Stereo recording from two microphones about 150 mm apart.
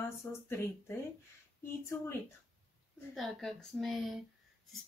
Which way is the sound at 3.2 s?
Centre (ahead or behind).